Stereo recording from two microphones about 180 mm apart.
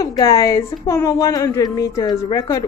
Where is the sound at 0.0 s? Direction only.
20° left (ahead or behind).